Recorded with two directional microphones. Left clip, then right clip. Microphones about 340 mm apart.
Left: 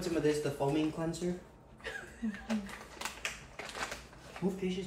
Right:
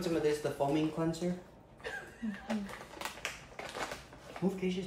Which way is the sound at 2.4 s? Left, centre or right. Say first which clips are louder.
Even; right.